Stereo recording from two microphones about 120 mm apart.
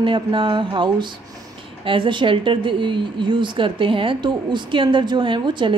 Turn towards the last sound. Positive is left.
turn(degrees=-40)  # may be behind; listen again after turning